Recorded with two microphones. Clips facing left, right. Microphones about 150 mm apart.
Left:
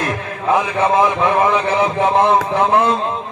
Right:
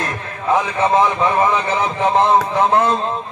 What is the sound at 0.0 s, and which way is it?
A man's voice, 10° left (ahead or behind).